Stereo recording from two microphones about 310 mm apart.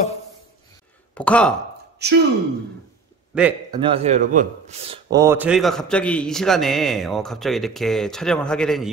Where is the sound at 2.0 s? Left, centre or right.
Right.